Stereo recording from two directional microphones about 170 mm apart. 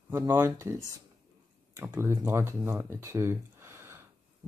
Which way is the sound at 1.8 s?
15° right (ahead or behind).